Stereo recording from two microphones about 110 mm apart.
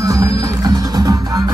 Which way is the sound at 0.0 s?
30° right (ahead or behind).